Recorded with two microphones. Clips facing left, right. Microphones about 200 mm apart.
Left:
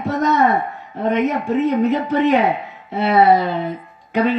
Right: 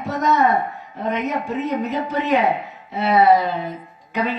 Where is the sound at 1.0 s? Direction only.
55° left (ahead or behind).